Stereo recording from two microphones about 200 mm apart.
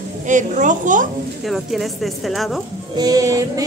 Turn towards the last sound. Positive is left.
turn(degrees=-15)  # may be behind; listen again after turning